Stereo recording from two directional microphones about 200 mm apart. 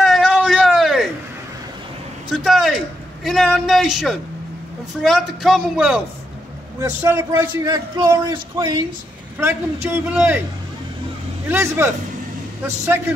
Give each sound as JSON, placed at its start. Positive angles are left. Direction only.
{"t": 0.0, "sound": "a sound", "side_deg": 0}
{"t": 2.3, "sound": "a sound", "side_deg": 0}
{"t": 3.3, "sound": "a man's voice", "side_deg": 0}
{"t": 6.8, "sound": "a man's voice", "side_deg": -10}
{"t": 9.4, "sound": "a man's voice", "side_deg": -10}
{"t": 11.4, "sound": "a man's voice", "side_deg": -10}